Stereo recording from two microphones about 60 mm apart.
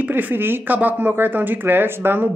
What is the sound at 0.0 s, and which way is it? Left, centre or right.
Speech, right.